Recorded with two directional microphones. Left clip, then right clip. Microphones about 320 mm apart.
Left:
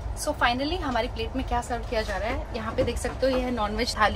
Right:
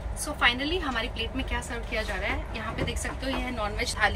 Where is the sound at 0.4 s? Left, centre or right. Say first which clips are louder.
Right 1 dB; centre.